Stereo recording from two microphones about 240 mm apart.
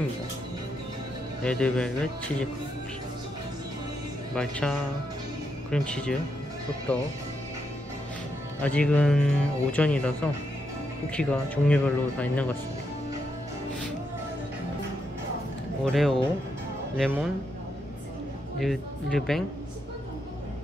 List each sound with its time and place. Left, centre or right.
1.4 s speech: centre
4.4 s speech: centre
8.6 s speech: centre
15.8 s speech: centre
18.6 s speech: centre